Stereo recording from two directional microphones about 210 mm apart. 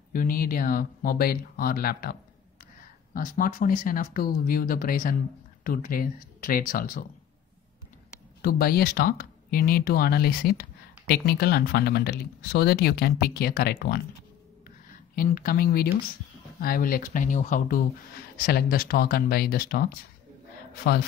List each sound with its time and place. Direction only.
0.1 s speech: 40° left (ahead or behind)
8.4 s speech: 45° left (ahead or behind)
15.1 s speech: 45° left (ahead or behind)